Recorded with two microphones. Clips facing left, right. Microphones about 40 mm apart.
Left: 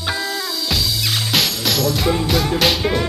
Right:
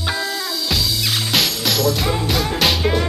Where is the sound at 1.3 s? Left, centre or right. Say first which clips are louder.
Even; centre.